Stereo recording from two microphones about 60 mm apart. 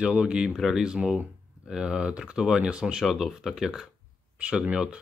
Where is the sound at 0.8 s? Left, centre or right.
Centre.